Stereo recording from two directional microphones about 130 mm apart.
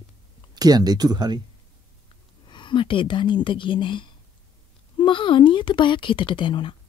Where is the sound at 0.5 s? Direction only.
30° right (ahead or behind).